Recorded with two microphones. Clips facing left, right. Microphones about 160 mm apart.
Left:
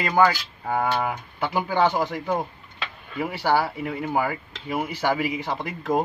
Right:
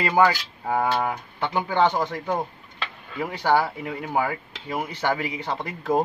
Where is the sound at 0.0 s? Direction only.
5° right (ahead or behind).